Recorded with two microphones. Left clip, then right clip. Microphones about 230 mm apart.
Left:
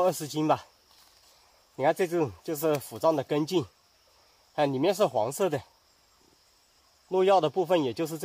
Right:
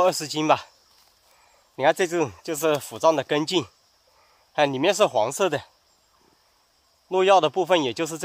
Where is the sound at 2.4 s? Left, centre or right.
Right.